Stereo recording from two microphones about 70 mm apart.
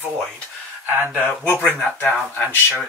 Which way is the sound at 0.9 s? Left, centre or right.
Right.